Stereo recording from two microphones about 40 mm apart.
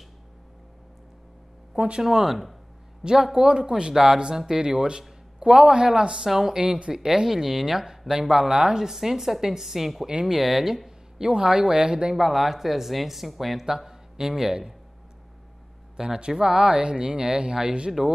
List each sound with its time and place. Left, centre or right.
1.8 s speech: right
2.0 s a woman's voice: centre
3.0 s speech: centre
3.9 s a woman's voice: centre
4.6 s a woman's voice: right
6.6 s a woman's voice: right
12.2 s speech: centre
13.7 s a man's voice: centre
16.2 s speech: centre